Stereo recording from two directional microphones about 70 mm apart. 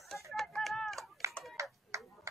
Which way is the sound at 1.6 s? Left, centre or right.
Right.